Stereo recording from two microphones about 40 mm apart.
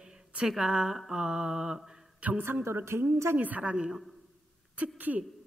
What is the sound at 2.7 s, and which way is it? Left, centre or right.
Speech, right.